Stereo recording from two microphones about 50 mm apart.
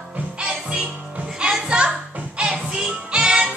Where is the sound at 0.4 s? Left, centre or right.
Centre.